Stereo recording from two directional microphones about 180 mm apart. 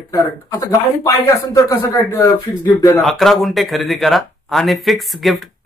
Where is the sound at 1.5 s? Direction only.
20° left (ahead or behind).